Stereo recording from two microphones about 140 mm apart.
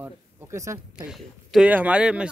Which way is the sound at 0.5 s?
20° right (ahead or behind).